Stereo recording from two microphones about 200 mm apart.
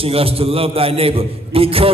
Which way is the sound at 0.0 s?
30° right (ahead or behind).